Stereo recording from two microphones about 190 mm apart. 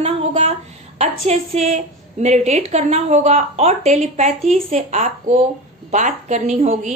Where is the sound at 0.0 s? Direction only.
35° right (ahead or behind).